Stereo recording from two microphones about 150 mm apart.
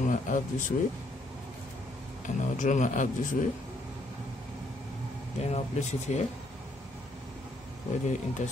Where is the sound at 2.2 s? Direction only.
55° left (ahead or behind).